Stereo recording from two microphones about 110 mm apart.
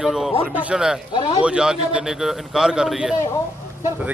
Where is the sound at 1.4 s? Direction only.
10° right (ahead or behind).